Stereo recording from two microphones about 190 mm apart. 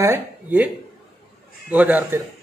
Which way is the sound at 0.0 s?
10° right (ahead or behind).